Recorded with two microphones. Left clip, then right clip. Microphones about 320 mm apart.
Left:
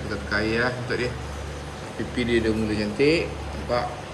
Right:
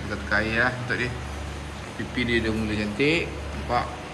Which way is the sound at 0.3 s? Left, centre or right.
Centre.